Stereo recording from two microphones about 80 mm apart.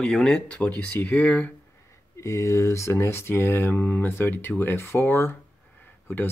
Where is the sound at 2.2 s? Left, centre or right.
Left.